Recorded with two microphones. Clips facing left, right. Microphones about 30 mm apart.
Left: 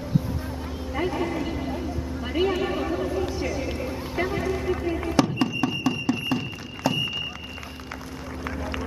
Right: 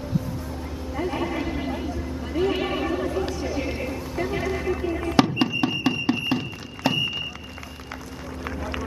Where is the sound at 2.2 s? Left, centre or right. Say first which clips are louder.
Even; left.